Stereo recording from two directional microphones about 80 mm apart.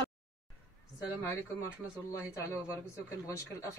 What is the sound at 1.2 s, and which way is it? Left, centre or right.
Speech, left.